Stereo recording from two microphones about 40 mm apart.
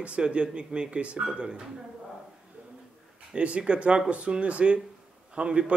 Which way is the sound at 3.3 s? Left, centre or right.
Right.